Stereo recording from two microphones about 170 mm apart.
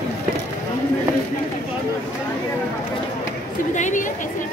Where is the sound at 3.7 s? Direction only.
45° left (ahead or behind).